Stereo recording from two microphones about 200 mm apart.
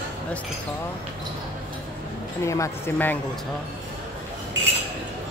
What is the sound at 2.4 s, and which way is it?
Speech, 15° left (ahead or behind).